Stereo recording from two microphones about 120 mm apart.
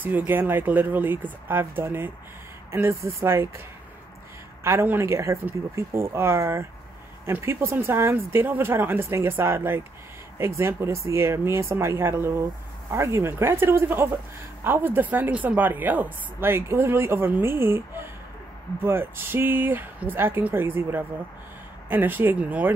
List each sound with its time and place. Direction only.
0.0 s speech: 15° right (ahead or behind)
4.6 s speech: 20° right (ahead or behind)